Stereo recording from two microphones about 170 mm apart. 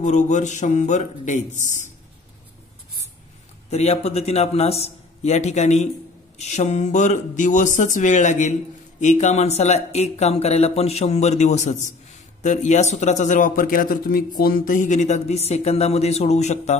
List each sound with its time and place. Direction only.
0.0 s speech: 45° left (ahead or behind)
3.7 s speech: 40° left (ahead or behind)